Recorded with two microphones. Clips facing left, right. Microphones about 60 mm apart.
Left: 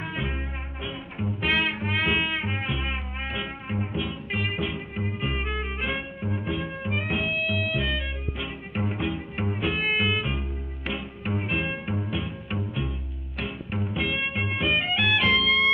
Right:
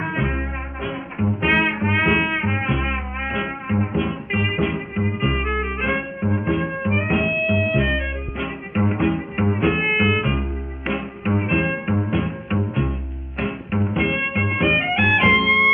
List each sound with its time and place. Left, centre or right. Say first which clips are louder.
0.0 s music: right 8 dB; right